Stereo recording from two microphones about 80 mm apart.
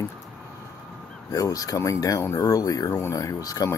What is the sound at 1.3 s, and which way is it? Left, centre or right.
Speech, left.